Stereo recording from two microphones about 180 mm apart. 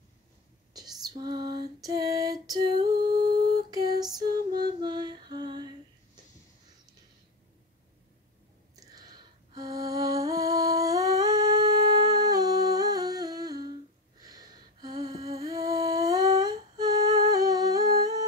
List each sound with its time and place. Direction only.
0.7 s female singing: 20° right (ahead or behind)
8.7 s music: 20° right (ahead or behind)
14.2 s a sound: 20° right (ahead or behind)
15.0 s humming: 20° right (ahead or behind)